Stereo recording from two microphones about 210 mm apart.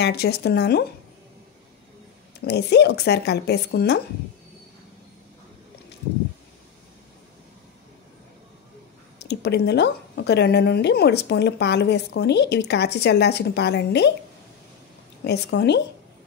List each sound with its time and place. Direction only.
0.0 s a woman's voice: 50° left (ahead or behind)
2.4 s a woman's voice: 50° left (ahead or behind)
9.2 s a woman's voice: 50° left (ahead or behind)
15.2 s a woman's voice: 55° left (ahead or behind)